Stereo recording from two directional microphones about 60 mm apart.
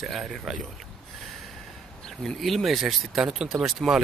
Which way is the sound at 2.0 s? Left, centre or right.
Centre.